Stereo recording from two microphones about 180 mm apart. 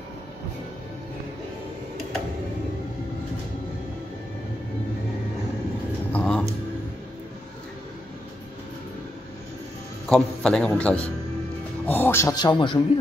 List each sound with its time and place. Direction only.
6.1 s music: 5° left (ahead or behind)
10.0 s a man's voice: 5° left (ahead or behind); by 12.8 s 25° left (ahead or behind)